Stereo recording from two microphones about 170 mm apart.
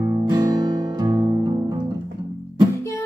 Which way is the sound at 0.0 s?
25° right (ahead or behind).